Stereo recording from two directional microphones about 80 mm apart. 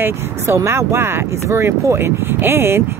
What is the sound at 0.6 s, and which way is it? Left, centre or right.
Speech, right.